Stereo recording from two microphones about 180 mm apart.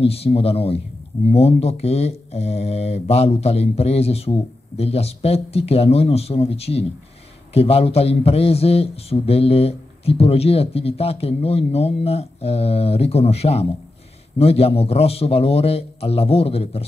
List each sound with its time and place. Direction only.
0.0 s a man's voice: 35° left (ahead or behind)